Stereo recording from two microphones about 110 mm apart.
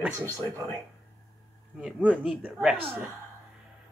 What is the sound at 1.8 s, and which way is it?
Speech, 10° right (ahead or behind).